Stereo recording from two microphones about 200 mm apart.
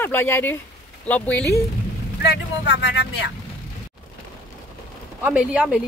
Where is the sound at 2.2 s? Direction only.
60° left (ahead or behind).